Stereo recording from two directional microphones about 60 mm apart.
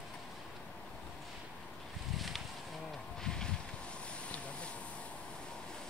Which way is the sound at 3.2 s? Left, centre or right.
Centre.